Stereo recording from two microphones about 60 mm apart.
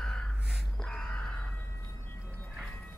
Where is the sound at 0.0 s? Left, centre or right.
Centre.